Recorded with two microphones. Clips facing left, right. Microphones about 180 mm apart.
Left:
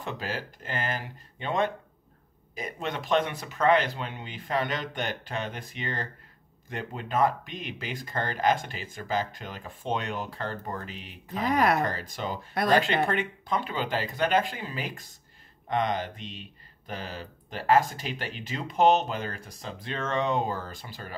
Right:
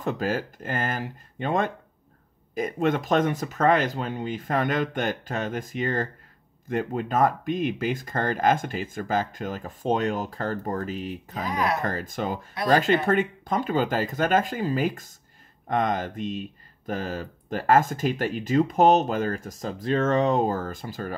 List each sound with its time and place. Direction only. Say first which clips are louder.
0.0 s speech: right 8 dB; 45° right (ahead or behind)
11.5 s speech: left 2 dB; 55° left (ahead or behind)
11.8 s speech: right 3 dB; 45° right (ahead or behind)